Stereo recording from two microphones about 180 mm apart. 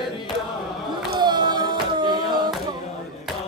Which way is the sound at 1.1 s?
25° right (ahead or behind).